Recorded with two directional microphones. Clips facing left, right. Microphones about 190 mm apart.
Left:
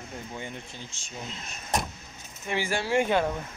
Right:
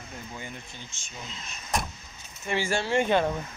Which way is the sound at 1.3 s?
55° left (ahead or behind).